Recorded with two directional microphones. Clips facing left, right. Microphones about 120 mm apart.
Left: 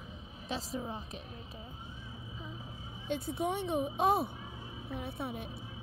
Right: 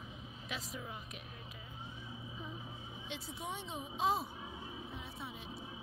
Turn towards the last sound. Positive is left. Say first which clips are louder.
# left 8 dB
turn(degrees=55)  # may be behind; listen again after turning